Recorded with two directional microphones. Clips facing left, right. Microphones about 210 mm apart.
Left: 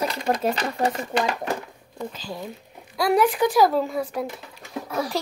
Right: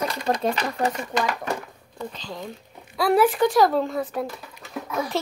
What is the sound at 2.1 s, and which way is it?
Speech, 5° left (ahead or behind).